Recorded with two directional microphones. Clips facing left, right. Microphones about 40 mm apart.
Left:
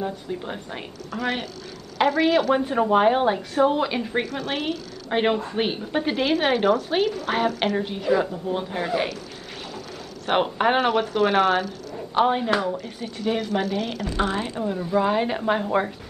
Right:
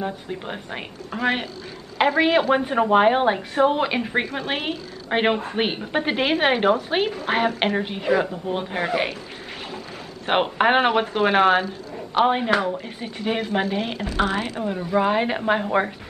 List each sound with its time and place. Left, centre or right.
0.0 s a woman's voice: right
10.2 s a woman's voice: right
14.6 s a woman's voice: centre